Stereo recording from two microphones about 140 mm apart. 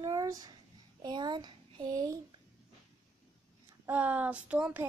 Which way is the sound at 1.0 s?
30° right (ahead or behind).